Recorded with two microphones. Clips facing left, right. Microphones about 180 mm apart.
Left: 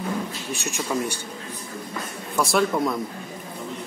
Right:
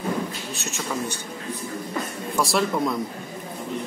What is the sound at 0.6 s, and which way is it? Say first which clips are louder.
Speech: left 3 dB; 15° left (ahead or behind).